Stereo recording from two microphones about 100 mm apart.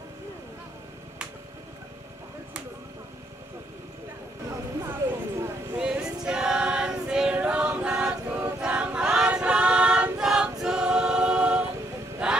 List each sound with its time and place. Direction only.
4.8 s a sound: 20° right (ahead or behind)
5.8 s choir: 10° right (ahead or behind)
12.2 s music: 10° right (ahead or behind)